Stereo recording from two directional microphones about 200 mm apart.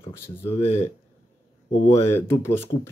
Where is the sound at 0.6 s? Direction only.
35° left (ahead or behind).